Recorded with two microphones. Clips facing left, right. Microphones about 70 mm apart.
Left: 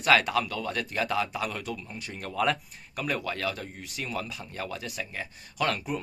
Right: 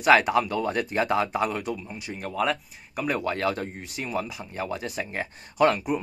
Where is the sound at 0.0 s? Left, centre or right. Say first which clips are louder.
Right 4 dB; right; by 2.6 s centre.